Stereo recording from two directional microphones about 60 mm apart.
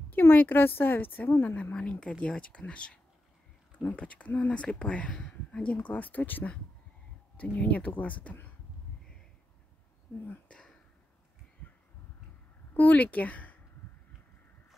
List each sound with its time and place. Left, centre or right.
0.1 s speech: left
1.7 s speech: centre
10.5 s a sound: centre
12.7 s speech: left